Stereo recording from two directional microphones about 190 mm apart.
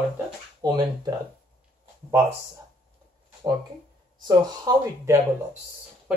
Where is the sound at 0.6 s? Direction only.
20° right (ahead or behind).